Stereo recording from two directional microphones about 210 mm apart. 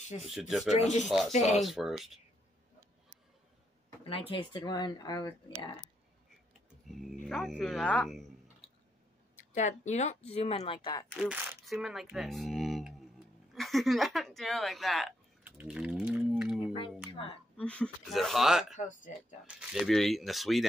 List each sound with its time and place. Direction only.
0.3 s speech: centre (ahead or behind)
1.3 s speech: 35° left (ahead or behind)
1.6 s speech: centre (ahead or behind)
4.0 s speech: 25° left (ahead or behind)
6.9 s speech: centre (ahead or behind)
9.4 s speech: 35° left (ahead or behind)
11.1 s speech: 5° right (ahead or behind)
13.6 s a sound: centre (ahead or behind)
17.1 s a sound: 25° left (ahead or behind)
17.6 s speech: 5° left (ahead or behind)
18.8 s speech: 35° left (ahead or behind)
19.4 s speech: centre (ahead or behind)